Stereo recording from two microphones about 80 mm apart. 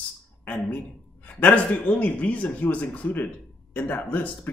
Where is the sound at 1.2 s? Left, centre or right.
Centre.